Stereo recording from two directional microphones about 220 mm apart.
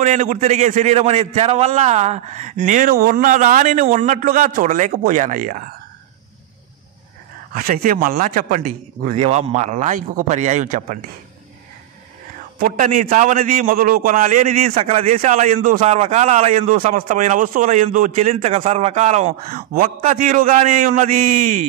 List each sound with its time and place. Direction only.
0.0 s a man's voice: 35° right (ahead or behind)
7.5 s a man's voice: 40° right (ahead or behind)
12.5 s a man's voice: 40° right (ahead or behind)